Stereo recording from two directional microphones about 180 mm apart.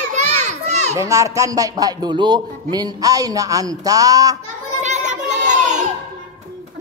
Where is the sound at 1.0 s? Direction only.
15° right (ahead or behind).